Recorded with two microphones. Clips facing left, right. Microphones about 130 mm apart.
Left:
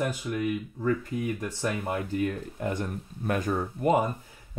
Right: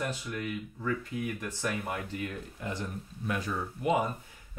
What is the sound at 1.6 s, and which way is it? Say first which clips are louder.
Speech: left 4 dB; 35° left (ahead or behind).